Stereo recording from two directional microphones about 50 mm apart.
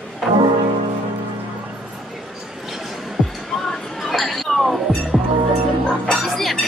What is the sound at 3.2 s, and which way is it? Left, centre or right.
Music, centre.